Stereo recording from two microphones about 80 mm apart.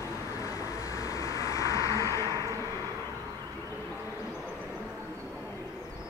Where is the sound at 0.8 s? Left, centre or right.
Left.